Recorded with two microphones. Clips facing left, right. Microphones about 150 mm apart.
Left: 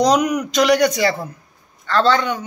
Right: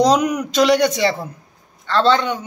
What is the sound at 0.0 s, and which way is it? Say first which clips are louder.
A woman's voice: right 1 dB; 25° right (ahead or behind).